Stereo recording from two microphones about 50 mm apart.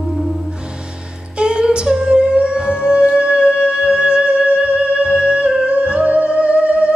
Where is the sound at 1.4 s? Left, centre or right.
Centre.